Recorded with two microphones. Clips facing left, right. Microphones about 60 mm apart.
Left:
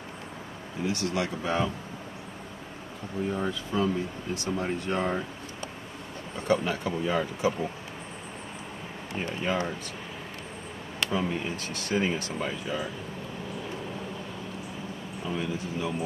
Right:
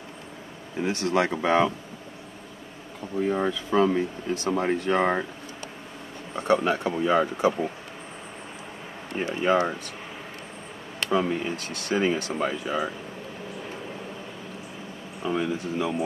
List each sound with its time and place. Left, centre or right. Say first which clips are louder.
0.8 s speech: right 5 dB; right
1.4 s speech: right 7 dB; right
3.3 s speech: right 6 dB; right
4.4 s speech: right 5 dB; right
4.9 s speech: right 5 dB; right
6.3 s speech: right 4 dB; right
9.1 s speech: right 7 dB; right
11.1 s speech: right 6 dB; right
15.2 s speech: right 5 dB; right